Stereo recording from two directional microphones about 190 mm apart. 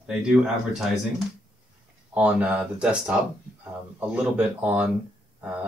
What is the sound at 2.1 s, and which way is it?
Speech, 5° right (ahead or behind).